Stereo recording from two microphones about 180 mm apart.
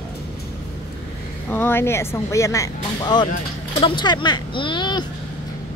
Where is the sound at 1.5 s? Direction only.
10° left (ahead or behind).